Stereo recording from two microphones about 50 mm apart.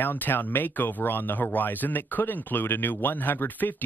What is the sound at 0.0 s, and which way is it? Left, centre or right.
Speech, left.